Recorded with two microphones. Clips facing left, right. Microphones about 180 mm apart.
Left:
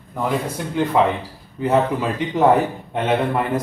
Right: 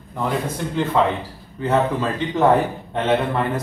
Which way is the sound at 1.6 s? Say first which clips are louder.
Left 1 dB; 15° left (ahead or behind).